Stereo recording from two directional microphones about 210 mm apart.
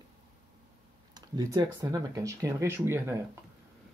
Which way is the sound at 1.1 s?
20° right (ahead or behind).